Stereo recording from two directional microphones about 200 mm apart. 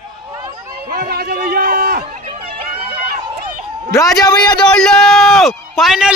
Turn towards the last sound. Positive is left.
turn(degrees=0)  # may be behind; listen again after turning